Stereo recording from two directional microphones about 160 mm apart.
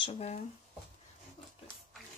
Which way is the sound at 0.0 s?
45° left (ahead or behind).